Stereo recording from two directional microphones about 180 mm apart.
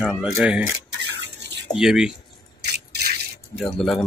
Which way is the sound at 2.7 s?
60° right (ahead or behind).